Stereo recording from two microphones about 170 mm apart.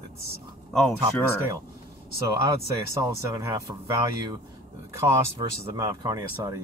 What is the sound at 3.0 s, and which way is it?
Speech, 20° right (ahead or behind).